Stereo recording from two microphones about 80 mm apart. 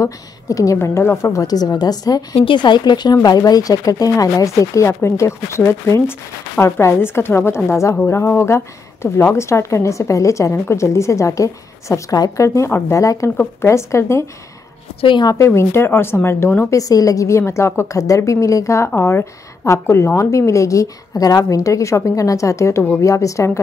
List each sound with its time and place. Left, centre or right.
0.0 s a woman's voice: left
2.4 s a woman's voice: left
12.4 s a woman's voice: left
15.0 s a woman's voice: left
15.3 s a woman's voice: left
16.7 s a woman's voice: left